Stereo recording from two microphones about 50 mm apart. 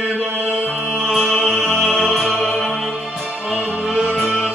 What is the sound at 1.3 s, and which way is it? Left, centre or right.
Music, centre.